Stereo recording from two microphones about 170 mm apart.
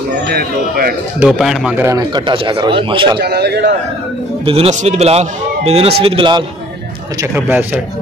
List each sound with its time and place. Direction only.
0.3 s a man's voice: 65° right (ahead or behind)
1.2 s speech: 5° right (ahead or behind)
1.9 s speech: 25° right (ahead or behind)
3.2 s a man's voice: 75° right (ahead or behind)
4.5 s a man's voice: 40° right (ahead or behind)
7.2 s speech: 10° right (ahead or behind)